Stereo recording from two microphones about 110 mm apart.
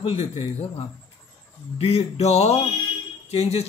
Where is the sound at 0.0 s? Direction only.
60° left (ahead or behind).